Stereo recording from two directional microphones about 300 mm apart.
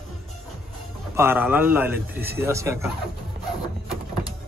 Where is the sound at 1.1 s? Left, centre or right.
Centre.